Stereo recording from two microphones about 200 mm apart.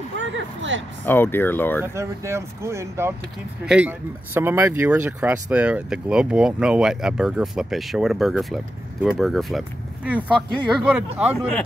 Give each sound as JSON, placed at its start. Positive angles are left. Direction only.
{"t": 0.2, "sound": "speech", "side_deg": -70}
{"t": 1.0, "sound": "speech", "side_deg": 10}
{"t": 2.0, "sound": "speech", "side_deg": -15}